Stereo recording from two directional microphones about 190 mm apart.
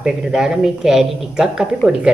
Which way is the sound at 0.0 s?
5° right (ahead or behind).